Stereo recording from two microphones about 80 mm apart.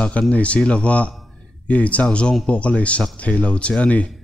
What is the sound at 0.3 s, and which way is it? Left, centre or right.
Speech, centre.